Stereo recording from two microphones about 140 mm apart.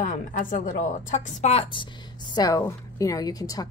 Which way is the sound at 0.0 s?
65° left (ahead or behind).